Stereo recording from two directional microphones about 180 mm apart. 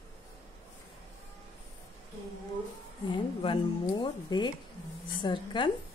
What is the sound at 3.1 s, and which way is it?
Speech, 25° left (ahead or behind).